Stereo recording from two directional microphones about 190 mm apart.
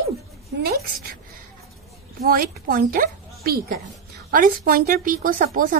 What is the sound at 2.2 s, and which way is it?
A woman's voice, 50° right (ahead or behind).